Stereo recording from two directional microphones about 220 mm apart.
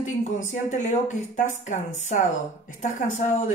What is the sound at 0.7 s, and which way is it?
Speech, 35° left (ahead or behind).